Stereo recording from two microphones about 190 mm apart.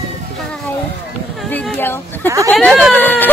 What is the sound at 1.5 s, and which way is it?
Speech, 5° left (ahead or behind).